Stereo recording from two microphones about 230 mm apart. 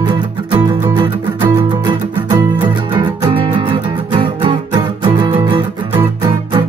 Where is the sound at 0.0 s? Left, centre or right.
Right.